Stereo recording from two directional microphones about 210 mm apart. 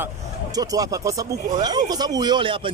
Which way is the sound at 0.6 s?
15° right (ahead or behind).